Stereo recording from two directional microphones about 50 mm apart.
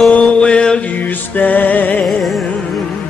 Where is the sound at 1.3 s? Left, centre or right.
Left.